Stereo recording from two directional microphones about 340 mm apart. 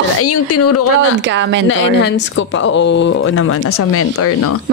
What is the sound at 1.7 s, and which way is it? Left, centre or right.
Speech, left.